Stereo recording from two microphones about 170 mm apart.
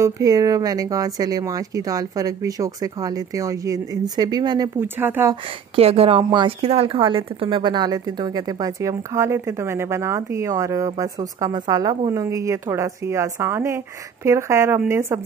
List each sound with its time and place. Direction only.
0.0 s a woman's voice: 20° right (ahead or behind)
4.7 s a woman's voice: 10° right (ahead or behind)
5.3 s a woman's voice: 35° right (ahead or behind); by 15.1 s 15° right (ahead or behind)